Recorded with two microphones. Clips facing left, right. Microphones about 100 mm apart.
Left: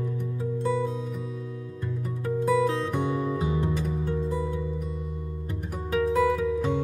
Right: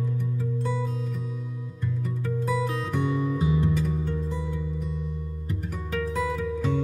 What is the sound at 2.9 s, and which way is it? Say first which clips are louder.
Music: even; 30° left (ahead or behind).